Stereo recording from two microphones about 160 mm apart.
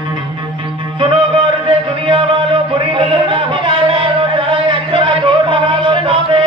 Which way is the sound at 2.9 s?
30° right (ahead or behind).